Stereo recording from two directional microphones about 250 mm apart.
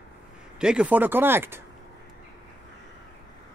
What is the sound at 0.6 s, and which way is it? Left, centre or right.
Speech, centre.